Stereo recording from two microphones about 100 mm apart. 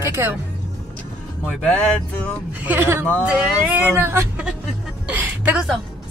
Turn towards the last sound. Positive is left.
turn(degrees=-15)  # may be behind; listen again after turning